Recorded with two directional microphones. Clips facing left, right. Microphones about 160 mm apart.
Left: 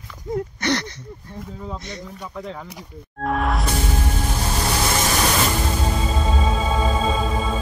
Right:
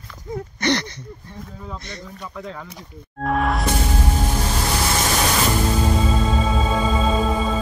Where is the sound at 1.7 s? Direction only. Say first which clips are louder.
Left 2 dB; 15° left (ahead or behind).